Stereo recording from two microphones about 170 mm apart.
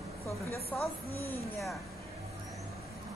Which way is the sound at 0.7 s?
5° left (ahead or behind).